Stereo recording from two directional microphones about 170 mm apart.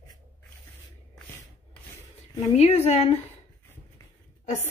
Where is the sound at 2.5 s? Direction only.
40° left (ahead or behind).